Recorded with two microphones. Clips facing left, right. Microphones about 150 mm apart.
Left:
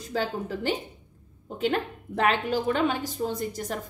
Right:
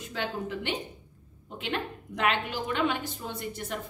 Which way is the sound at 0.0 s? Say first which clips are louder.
Left 4 dB; 35° left (ahead or behind).